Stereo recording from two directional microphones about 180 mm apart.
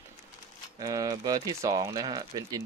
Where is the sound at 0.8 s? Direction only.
20° right (ahead or behind).